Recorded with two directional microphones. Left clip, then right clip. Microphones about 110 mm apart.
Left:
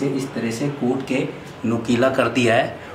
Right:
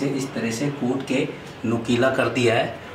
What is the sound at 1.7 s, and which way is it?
Speech, 20° left (ahead or behind).